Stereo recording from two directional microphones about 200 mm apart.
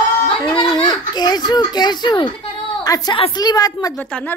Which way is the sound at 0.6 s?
20° left (ahead or behind).